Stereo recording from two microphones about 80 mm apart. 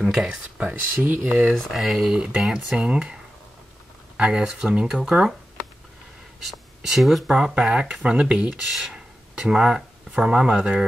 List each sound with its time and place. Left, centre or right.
0.0 s speech: centre
1.5 s speech: centre
4.2 s speech: centre
6.4 s speech: centre
7.3 s speech: centre